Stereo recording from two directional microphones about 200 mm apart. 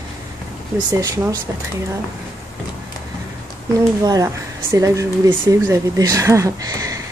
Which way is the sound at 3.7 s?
15° right (ahead or behind).